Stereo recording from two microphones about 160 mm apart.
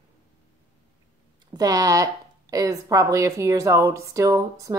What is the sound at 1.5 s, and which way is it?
Speech, 20° right (ahead or behind).